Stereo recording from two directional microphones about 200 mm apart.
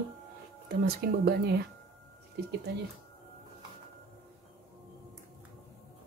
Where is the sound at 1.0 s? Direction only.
50° right (ahead or behind).